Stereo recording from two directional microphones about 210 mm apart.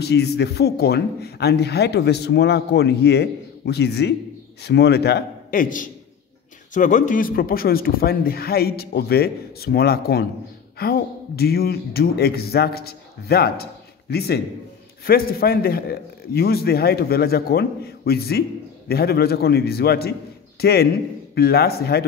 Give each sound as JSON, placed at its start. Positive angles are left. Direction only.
{"t": 0.0, "sound": "speech", "side_deg": 50}